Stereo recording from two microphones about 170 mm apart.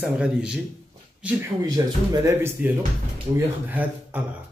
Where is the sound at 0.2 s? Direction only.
5° right (ahead or behind).